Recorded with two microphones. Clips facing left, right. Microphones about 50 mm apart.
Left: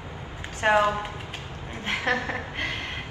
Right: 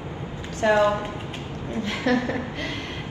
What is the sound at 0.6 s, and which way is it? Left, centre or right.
A woman's voice, left.